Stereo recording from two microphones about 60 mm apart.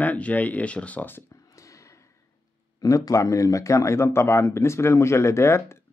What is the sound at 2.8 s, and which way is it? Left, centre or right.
Speech, left.